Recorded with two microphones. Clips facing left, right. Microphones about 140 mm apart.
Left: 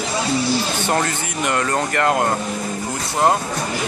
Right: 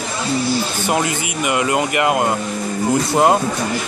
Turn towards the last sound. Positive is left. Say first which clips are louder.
# right 4 dB
turn(degrees=-15)  # may be behind; listen again after turning